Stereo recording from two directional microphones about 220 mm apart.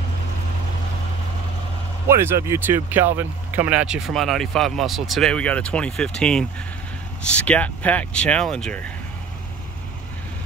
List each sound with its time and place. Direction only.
2.0 s speech: 10° right (ahead or behind); by 8.8 s 5° left (ahead or behind)